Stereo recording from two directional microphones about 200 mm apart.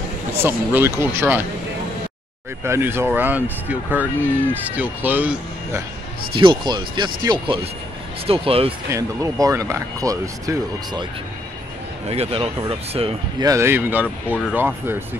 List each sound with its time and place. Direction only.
0.4 s speech: 10° right (ahead or behind)
2.6 s speech: 10° right (ahead or behind)
6.3 s speech: 25° right (ahead or behind)
8.9 s speech: 15° right (ahead or behind)
12.1 s speech: 30° right (ahead or behind)
13.5 s speech: 15° right (ahead or behind)